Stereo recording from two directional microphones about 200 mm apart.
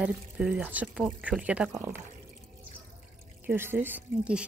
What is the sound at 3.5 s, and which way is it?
Speech, 10° right (ahead or behind).